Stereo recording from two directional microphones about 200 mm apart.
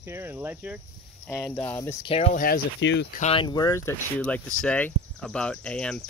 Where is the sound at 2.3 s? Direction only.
45° left (ahead or behind).